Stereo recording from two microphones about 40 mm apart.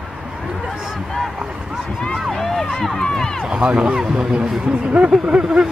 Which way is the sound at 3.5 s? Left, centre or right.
Right.